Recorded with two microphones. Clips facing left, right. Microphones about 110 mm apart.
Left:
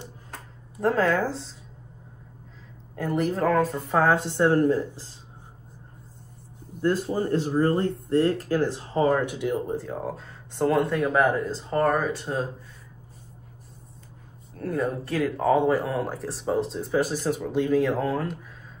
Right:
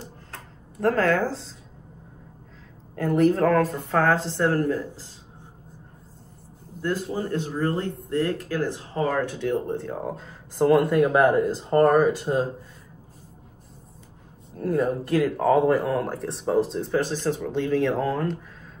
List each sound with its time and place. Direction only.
0.7 s speech: 5° left (ahead or behind)
3.0 s speech: centre (ahead or behind)
3.9 s a woman's voice: 15° left (ahead or behind)
6.8 s speech: 30° left (ahead or behind); by 12.0 s centre (ahead or behind)
12.0 s speech: 10° right (ahead or behind)
14.6 s speech: 5° right (ahead or behind)